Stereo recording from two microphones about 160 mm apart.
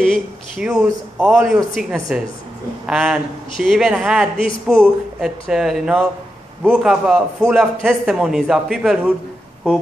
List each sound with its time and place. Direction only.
0.0 s a man's voice: centre (ahead or behind)